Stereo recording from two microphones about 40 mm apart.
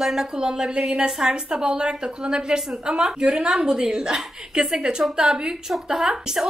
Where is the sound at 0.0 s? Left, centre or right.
Centre.